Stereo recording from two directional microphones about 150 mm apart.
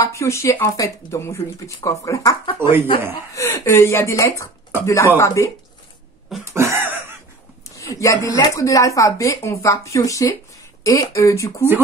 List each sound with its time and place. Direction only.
0.0 s speech: 20° left (ahead or behind)
2.7 s speech: 15° right (ahead or behind)
3.3 s speech: 20° left (ahead or behind)
6.4 s a sound: 20° right (ahead or behind)
7.7 s speech: 20° left (ahead or behind)